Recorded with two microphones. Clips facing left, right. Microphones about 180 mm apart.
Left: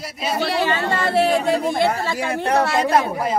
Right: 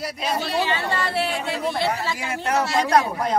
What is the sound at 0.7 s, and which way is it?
Speech, 45° left (ahead or behind).